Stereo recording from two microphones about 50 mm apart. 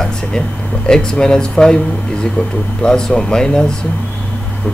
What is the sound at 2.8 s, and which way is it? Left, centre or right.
Speech, centre.